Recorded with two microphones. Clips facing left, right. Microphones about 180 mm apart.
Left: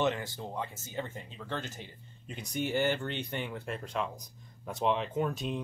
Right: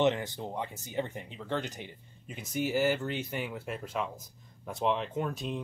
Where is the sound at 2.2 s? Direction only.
5° right (ahead or behind).